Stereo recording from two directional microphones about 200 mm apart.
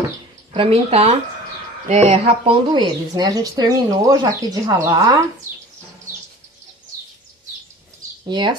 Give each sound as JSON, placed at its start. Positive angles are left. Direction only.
{"t": 0.5, "sound": "a woman's voice", "side_deg": -30}
{"t": 8.3, "sound": "a woman's voice", "side_deg": -20}